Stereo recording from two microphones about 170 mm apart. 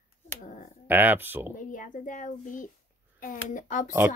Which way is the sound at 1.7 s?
50° left (ahead or behind).